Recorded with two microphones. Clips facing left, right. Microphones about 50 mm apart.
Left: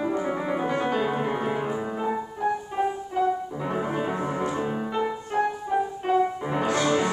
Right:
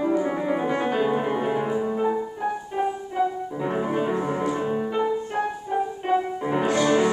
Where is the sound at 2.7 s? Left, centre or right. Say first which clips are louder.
Right 1 dB; centre.